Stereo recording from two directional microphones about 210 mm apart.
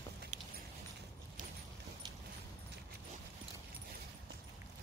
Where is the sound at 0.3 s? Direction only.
40° right (ahead or behind).